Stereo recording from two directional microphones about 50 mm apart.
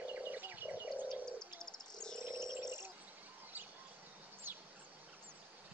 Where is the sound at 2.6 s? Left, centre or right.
Right.